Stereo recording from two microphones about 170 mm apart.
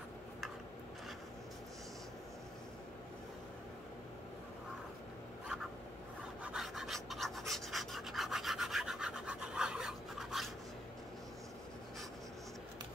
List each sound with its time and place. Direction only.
6.4 s rub: centre (ahead or behind)